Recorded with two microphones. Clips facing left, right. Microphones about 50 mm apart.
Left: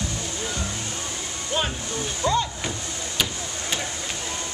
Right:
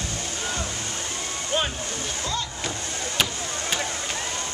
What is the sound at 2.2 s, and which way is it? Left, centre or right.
Rowboat, left.